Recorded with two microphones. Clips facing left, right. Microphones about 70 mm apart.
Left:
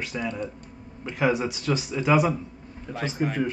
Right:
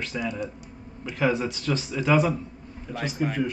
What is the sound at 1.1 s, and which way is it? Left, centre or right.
Speech, centre.